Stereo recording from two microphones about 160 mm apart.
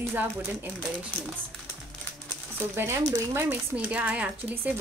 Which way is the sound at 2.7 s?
15° right (ahead or behind).